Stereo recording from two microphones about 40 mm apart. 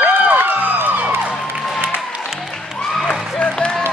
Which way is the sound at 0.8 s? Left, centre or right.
Right.